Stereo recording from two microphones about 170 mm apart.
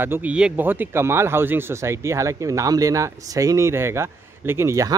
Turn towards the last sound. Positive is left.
turn(degrees=-20)  # may be behind; listen again after turning